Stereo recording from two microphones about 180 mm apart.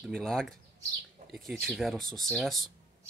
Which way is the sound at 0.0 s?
5° left (ahead or behind).